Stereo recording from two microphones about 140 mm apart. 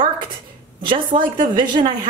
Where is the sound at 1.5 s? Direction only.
35° right (ahead or behind).